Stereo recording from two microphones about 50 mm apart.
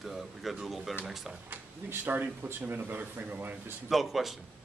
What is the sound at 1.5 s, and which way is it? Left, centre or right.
Speech, right.